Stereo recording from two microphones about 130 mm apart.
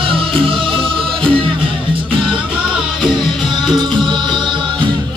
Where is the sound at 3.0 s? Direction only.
35° right (ahead or behind).